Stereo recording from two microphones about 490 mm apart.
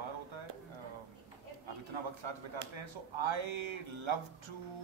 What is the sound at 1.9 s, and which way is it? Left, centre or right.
Speech, right.